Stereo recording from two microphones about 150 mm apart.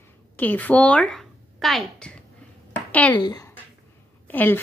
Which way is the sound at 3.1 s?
25° left (ahead or behind).